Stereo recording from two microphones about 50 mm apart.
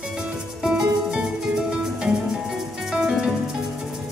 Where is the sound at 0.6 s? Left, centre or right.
Centre.